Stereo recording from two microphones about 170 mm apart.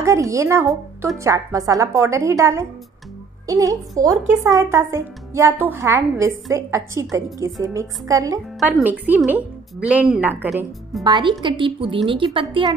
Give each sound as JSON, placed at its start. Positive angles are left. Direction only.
{"t": 0.0, "sound": "a woman's voice", "side_deg": -20}
{"t": 8.5, "sound": "a woman's voice", "side_deg": -5}
{"t": 11.1, "sound": "a woman's voice", "side_deg": -25}